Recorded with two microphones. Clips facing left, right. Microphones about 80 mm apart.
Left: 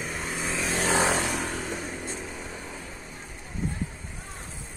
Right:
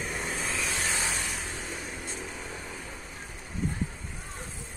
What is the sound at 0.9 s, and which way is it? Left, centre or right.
Vehicle, left.